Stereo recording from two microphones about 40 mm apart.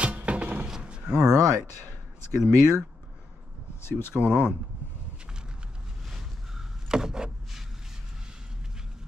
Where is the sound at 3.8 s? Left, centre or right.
Left.